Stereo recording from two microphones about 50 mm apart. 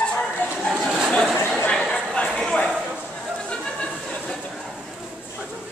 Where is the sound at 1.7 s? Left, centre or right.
Centre.